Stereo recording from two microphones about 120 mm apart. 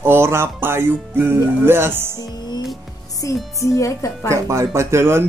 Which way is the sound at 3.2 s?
25° left (ahead or behind).